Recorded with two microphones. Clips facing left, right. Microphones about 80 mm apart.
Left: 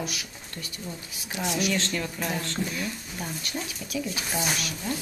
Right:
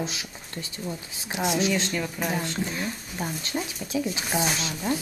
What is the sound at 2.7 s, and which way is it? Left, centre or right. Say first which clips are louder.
Speech: right 1 dB; right.